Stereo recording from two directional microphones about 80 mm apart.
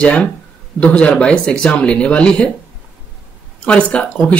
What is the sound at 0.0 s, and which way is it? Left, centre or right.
Speech, centre.